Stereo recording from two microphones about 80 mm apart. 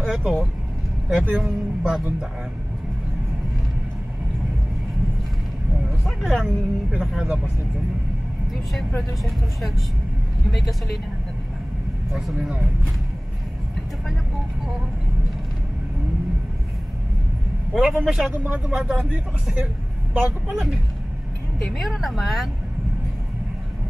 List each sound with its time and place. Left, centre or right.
0.0 s vehicle: centre
1.0 s speech: centre
6.0 s speech: centre
12.1 s speech: centre
12.4 s speech: centre
17.7 s speech: centre
20.2 s speech: right
21.7 s speech: centre